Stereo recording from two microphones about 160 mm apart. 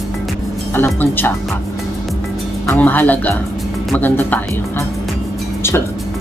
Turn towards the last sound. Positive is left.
turn(degrees=10)  # may be behind; listen again after turning